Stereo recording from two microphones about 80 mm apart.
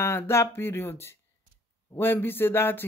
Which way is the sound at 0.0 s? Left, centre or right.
Left.